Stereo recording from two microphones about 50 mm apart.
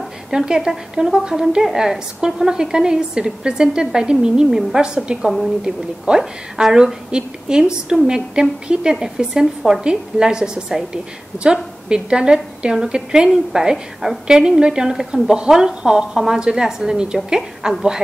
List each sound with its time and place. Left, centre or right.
0.3 s a woman's voice: centre